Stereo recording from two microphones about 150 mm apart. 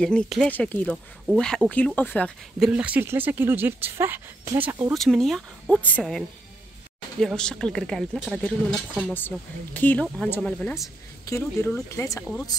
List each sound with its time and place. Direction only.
0.0 s speech: 5° left (ahead or behind)
2.6 s speech: 10° right (ahead or behind)
4.9 s speech: centre (ahead or behind)
9.8 s speech: 10° left (ahead or behind)
11.2 s speech: 20° left (ahead or behind)